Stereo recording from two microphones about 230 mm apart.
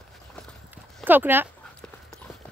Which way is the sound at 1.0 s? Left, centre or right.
Centre.